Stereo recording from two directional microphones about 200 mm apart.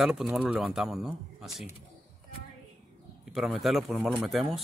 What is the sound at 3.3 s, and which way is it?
Speech, centre (ahead or behind).